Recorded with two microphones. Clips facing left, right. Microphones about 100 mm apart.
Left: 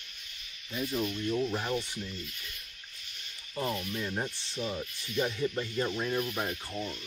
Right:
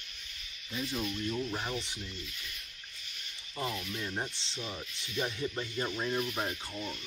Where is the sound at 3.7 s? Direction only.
15° left (ahead or behind).